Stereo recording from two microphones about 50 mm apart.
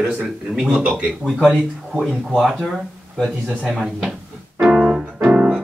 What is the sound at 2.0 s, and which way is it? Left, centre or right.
Speech, centre.